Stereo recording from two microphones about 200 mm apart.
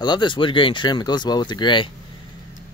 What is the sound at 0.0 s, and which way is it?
Speech, 20° left (ahead or behind).